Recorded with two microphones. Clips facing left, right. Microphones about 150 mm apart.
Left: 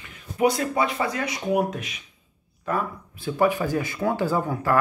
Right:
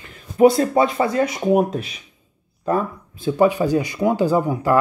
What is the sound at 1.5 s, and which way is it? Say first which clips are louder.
Speech: right 4 dB; 30° right (ahead or behind).